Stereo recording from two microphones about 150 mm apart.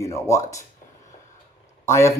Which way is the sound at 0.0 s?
20° left (ahead or behind).